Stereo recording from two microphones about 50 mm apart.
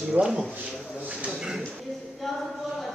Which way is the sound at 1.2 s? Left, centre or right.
Centre.